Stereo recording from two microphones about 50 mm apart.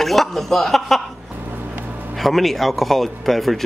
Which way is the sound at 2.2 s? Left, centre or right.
Centre.